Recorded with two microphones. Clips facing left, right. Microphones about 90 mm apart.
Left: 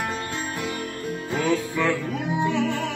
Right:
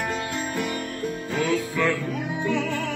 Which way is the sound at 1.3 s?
20° left (ahead or behind).